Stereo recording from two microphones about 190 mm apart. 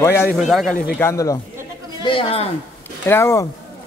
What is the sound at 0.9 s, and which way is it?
Speech, 15° left (ahead or behind).